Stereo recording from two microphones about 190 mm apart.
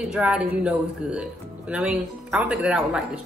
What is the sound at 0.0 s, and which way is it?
Speech, 5° right (ahead or behind).